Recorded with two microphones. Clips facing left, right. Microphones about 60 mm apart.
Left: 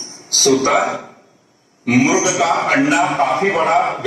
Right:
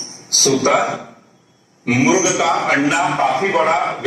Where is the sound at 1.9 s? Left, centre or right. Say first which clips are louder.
Even; left.